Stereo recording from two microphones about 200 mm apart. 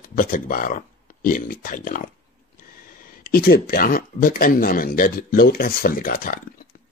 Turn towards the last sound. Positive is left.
turn(degrees=45)  # may be behind; listen again after turning